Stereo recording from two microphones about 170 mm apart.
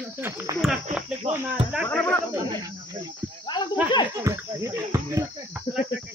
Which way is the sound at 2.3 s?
20° right (ahead or behind).